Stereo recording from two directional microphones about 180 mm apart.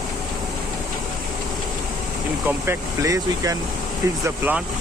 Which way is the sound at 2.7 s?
20° right (ahead or behind).